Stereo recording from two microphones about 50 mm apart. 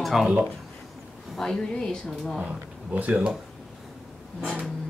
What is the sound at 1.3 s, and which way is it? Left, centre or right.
Speech, centre.